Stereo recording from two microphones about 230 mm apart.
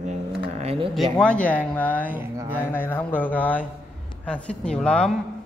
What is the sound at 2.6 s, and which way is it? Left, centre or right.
A man's voice, centre.